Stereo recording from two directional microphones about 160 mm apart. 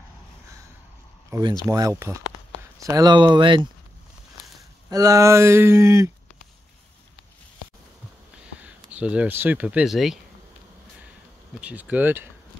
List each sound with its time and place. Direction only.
1.3 s speech: 20° right (ahead or behind)
4.8 s speech: 20° right (ahead or behind)
8.6 s speech: 10° right (ahead or behind)
11.6 s speech: 10° right (ahead or behind)